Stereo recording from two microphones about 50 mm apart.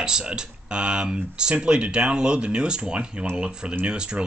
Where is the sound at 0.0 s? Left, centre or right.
Centre.